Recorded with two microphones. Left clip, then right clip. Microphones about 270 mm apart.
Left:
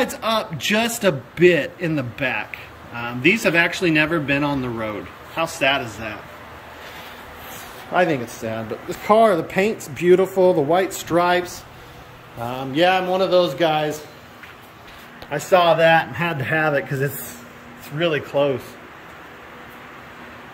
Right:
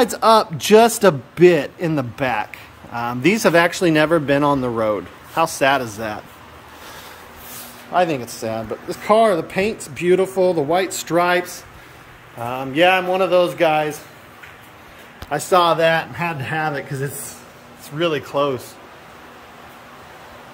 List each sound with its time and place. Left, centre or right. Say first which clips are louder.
0.0 s a man's voice: right 8 dB; right
7.9 s speech: right 1 dB; centre
12.4 s speech: right 3 dB; centre
15.2 s speech: even; centre